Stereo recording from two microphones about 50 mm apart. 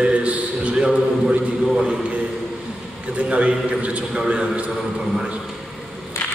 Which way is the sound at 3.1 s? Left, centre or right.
Right.